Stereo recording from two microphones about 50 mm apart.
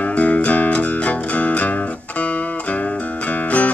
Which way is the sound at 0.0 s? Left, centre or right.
Left.